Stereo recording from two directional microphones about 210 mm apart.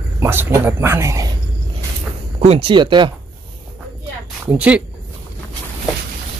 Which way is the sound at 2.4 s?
25° right (ahead or behind).